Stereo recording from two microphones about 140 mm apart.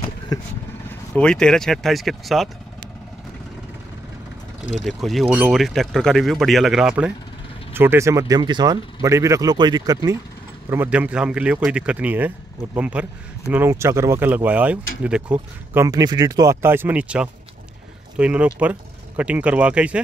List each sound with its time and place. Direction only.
0.3 s speech: 25° left (ahead or behind)
1.1 s speech: 5° left (ahead or behind)
4.8 s speech: centre (ahead or behind); by 10.1 s 30° right (ahead or behind)
10.7 s speech: 15° right (ahead or behind)
15.3 s speech: 20° right (ahead or behind)